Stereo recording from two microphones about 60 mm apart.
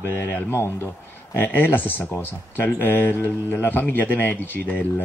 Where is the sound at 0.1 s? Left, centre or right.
Left.